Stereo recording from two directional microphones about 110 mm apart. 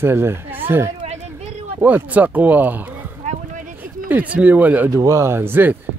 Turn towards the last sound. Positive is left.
turn(degrees=-20)  # may be behind; listen again after turning